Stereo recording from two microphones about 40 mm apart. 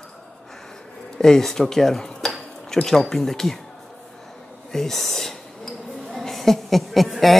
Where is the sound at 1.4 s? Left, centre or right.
Centre.